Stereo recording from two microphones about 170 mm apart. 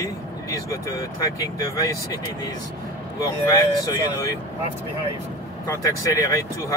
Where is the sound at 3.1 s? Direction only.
20° left (ahead or behind).